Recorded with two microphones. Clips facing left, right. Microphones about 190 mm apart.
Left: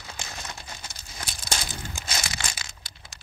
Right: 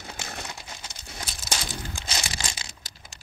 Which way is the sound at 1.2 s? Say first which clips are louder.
Even; centre (ahead or behind).